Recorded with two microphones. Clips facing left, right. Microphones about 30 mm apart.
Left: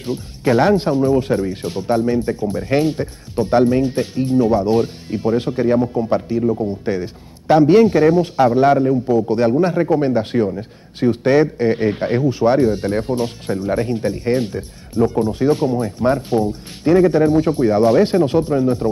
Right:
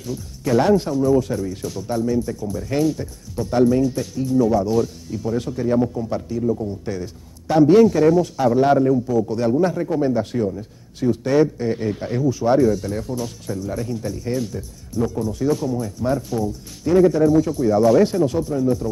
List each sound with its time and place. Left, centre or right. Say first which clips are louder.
0.0 s a man's voice: left 6 dB; left
9.1 s a man's voice: left 4 dB; left